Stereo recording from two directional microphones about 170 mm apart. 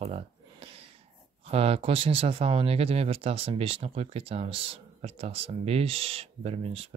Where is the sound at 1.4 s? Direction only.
35° right (ahead or behind).